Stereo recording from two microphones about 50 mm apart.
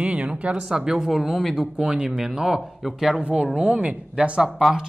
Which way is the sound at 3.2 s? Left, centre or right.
Right.